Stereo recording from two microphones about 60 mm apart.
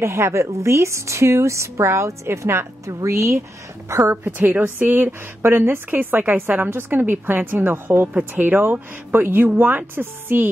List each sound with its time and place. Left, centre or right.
0.0 s a woman's voice: right
4.1 s a woman's voice: right
8.1 s a woman's voice: right